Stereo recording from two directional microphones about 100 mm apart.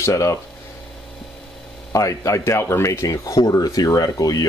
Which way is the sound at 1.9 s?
35° left (ahead or behind).